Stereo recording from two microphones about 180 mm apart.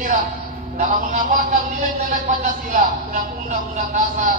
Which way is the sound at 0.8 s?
45° right (ahead or behind).